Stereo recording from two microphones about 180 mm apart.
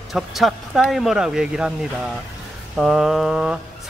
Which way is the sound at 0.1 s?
Centre (ahead or behind).